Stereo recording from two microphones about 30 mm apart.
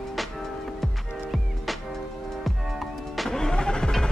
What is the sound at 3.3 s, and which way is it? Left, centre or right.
Music, centre.